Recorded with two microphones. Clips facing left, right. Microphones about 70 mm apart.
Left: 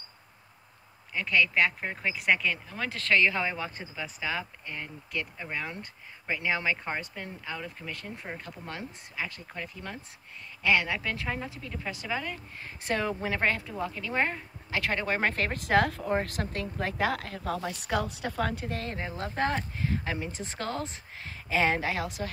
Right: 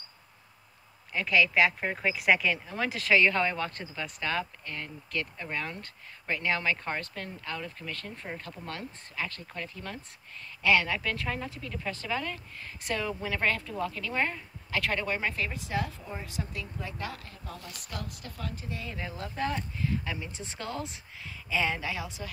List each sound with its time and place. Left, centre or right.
1.1 s speech: centre
12.5 s speech: left
15.0 s speech: left
18.9 s speech: left